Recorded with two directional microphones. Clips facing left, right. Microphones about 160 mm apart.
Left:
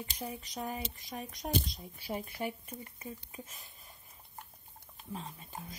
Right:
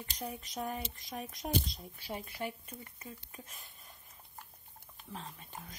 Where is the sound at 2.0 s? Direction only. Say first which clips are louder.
Left 3 dB; 10° left (ahead or behind).